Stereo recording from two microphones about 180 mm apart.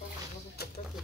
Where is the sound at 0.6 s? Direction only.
60° left (ahead or behind).